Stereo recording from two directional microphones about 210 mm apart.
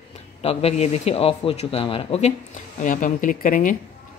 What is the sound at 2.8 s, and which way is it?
Speech, 40° left (ahead or behind).